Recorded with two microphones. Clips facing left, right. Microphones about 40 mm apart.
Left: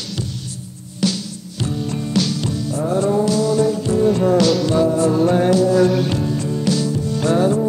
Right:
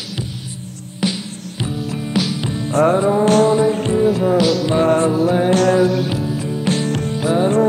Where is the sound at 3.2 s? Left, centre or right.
Right.